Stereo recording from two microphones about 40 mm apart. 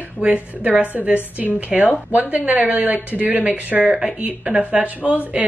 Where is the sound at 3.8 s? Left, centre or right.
Right.